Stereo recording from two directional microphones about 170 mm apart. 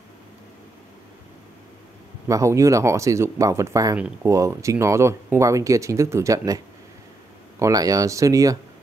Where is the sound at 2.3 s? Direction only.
20° right (ahead or behind).